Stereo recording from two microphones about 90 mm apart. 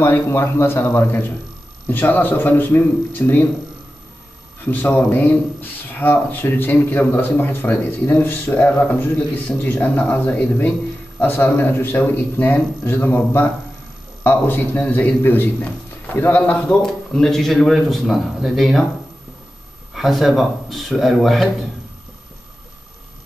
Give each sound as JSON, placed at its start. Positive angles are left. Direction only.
{"t": 0.0, "sound": "a man's voice", "side_deg": 30}
{"t": 4.6, "sound": "a man's voice", "side_deg": 20}
{"t": 19.9, "sound": "speech", "side_deg": 0}